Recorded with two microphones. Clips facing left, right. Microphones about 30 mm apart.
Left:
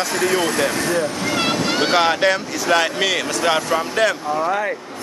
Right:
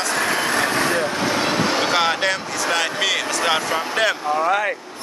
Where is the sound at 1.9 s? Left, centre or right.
Centre.